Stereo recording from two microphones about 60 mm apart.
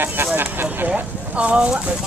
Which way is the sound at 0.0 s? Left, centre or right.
Right.